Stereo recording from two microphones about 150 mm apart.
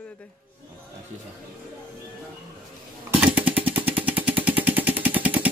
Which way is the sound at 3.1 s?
10° right (ahead or behind).